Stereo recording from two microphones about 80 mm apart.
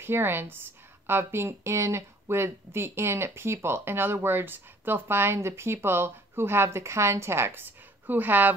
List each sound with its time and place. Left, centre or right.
0.0 s speech: right